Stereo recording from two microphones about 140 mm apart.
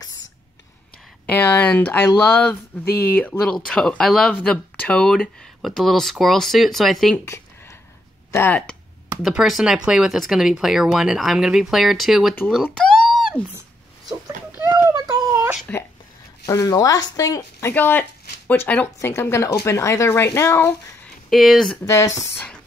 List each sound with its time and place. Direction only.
1.2 s speech: 15° left (ahead or behind)
7.2 s a sound: 20° left (ahead or behind)
8.3 s speech: 15° left (ahead or behind)
9.2 s speech: 5° right (ahead or behind)
12.6 s a sound: 5° left (ahead or behind)
13.4 s speech: 10° left (ahead or behind)
14.6 s a sound: 25° right (ahead or behind)
16.4 s speech: 25° left (ahead or behind)
21.3 s speech: centre (ahead or behind)
21.8 s speech: 20° left (ahead or behind)